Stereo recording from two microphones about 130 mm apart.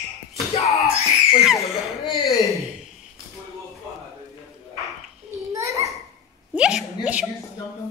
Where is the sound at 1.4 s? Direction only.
Centre (ahead or behind).